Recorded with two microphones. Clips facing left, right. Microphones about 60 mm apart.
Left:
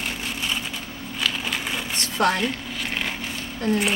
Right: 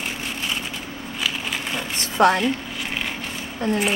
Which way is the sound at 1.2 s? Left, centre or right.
Centre.